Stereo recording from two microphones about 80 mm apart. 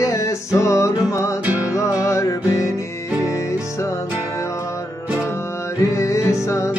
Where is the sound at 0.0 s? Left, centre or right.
Left.